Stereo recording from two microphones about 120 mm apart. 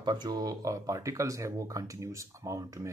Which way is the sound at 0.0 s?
35° right (ahead or behind).